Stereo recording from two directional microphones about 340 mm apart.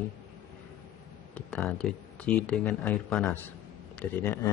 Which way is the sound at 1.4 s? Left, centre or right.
Centre.